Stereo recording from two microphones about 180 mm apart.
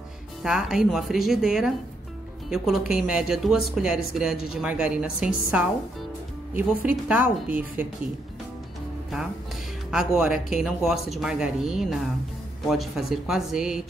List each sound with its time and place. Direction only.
0.4 s speech: centre (ahead or behind)
6.8 s a woman's voice: 5° right (ahead or behind)
9.8 s speech: 5° right (ahead or behind)